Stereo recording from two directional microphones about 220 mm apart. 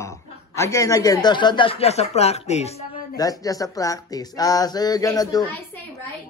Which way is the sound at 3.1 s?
15° left (ahead or behind).